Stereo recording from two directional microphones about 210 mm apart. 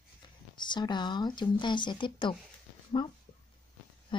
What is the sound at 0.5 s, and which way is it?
Speech, 20° left (ahead or behind).